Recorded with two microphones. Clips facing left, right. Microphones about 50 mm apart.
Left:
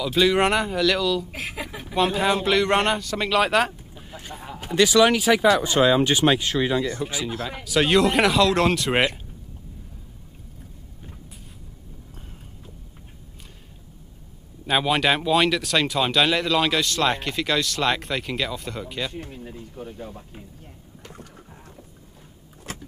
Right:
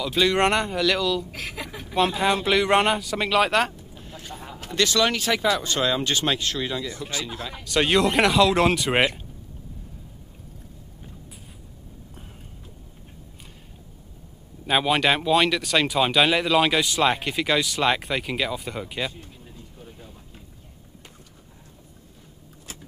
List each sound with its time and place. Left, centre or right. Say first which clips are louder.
0.0 s speech: left 1 dB; centre
1.3 s speech: left 2 dB; centre
14.7 s speech: even; centre
19.1 s speech: left 9 dB; left